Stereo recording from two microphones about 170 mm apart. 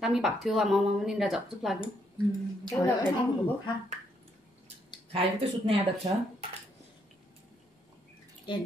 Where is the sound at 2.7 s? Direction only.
10° left (ahead or behind).